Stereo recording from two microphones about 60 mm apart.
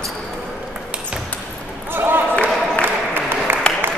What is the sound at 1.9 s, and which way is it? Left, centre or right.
Basketball bounce, right.